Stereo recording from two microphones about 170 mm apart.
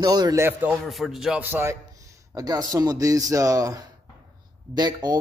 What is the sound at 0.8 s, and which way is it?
Speech, centre (ahead or behind).